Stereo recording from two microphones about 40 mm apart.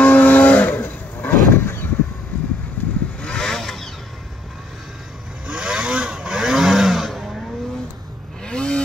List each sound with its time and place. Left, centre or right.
0.0 s vehicle: left
2.8 s vehicle: left
3.2 s vehicle: left
3.4 s vehicle: centre
5.5 s vehicle: right; by 7.2 s centre
8.5 s vehicle: left